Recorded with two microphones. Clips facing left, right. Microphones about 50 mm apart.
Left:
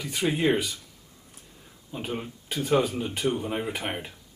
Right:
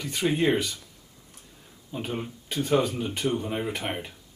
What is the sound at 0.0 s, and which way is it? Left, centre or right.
Speech, centre.